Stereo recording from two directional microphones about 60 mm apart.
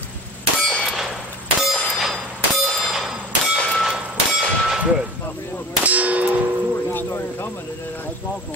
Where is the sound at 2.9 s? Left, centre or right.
Centre.